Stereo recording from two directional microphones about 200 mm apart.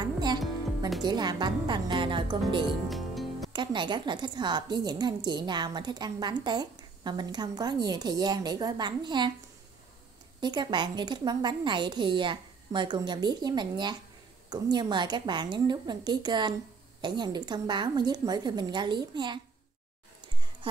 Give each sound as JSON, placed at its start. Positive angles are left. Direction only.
{"t": 0.0, "sound": "music", "side_deg": -20}
{"t": 0.4, "sound": "music", "side_deg": 0}
{"t": 1.0, "sound": "a woman's voice", "side_deg": -20}
{"t": 2.9, "sound": "music", "side_deg": 0}
{"t": 3.5, "sound": "a woman's voice", "side_deg": -20}
{"t": 10.4, "sound": "a woman's voice", "side_deg": -20}